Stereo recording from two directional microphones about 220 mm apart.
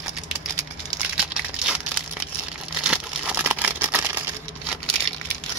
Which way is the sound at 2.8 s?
5° right (ahead or behind).